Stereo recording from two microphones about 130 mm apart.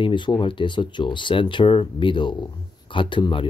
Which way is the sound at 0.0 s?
35° left (ahead or behind).